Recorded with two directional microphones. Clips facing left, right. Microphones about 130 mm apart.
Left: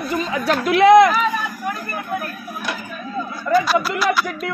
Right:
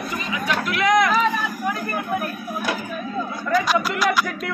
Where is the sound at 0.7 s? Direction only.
35° left (ahead or behind).